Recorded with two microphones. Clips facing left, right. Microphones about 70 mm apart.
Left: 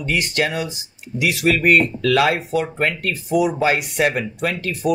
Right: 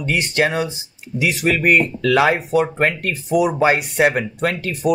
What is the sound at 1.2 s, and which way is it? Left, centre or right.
Speech, centre.